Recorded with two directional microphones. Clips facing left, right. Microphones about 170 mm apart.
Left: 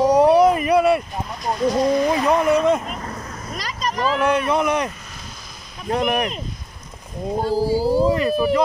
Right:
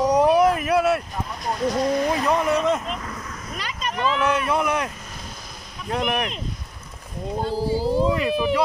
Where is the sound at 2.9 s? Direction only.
40° left (ahead or behind).